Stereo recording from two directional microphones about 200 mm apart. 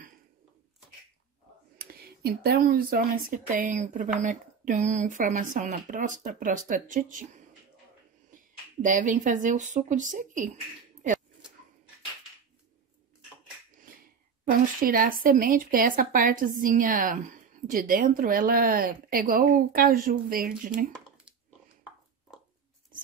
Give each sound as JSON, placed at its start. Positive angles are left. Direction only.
{"t": 1.8, "sound": "speech", "side_deg": -50}
{"t": 8.8, "sound": "speech", "side_deg": -40}
{"t": 14.8, "sound": "a woman's voice", "side_deg": -45}